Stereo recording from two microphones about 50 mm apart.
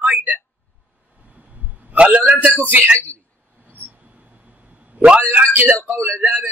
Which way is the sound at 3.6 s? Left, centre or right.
Right.